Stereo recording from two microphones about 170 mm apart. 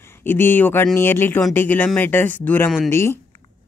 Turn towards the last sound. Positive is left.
turn(degrees=15)  # may be behind; listen again after turning